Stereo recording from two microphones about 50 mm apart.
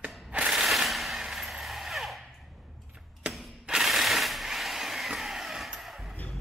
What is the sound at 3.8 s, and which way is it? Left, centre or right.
Vehicle, centre.